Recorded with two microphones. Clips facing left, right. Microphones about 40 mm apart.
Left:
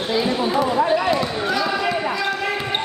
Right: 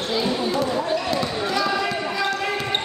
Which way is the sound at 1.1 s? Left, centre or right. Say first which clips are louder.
Left 2 dB; centre.